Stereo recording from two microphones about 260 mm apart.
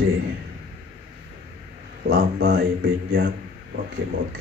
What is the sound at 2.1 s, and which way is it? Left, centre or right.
Speech, right.